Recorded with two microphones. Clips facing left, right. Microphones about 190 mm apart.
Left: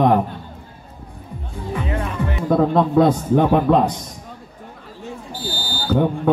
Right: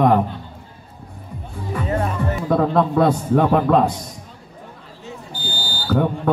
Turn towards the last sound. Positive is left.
turn(degrees=0)  # may be behind; listen again after turning